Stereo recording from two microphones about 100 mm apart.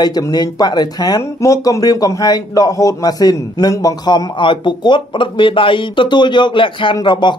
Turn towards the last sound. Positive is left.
turn(degrees=50)  # may be behind; listen again after turning